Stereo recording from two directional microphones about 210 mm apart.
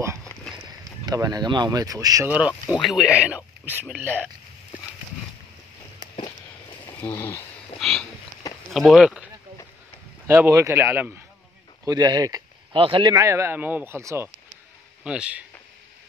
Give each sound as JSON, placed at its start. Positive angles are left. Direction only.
{"t": 0.7, "sound": "speech", "side_deg": -20}
{"t": 7.0, "sound": "speech", "side_deg": 15}
{"t": 7.8, "sound": "a sound", "side_deg": 0}
{"t": 8.7, "sound": "speech", "side_deg": 0}